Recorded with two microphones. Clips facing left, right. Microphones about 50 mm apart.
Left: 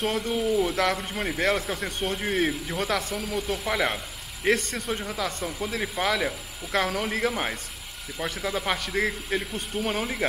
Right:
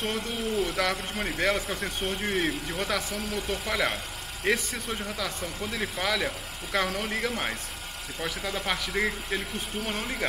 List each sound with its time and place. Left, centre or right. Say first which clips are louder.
0.0 s speech: left 5 dB; centre